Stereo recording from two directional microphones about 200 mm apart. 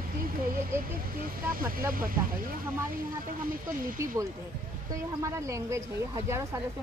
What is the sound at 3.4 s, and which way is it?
Speech, 45° right (ahead or behind).